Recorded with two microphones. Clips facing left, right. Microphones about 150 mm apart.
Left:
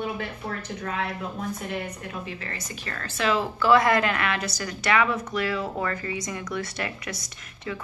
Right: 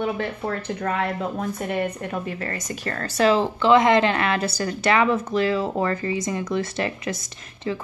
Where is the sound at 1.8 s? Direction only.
50° right (ahead or behind); by 7.8 s 30° right (ahead or behind).